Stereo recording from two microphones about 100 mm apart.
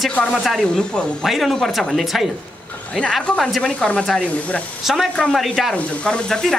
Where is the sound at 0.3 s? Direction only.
Centre (ahead or behind).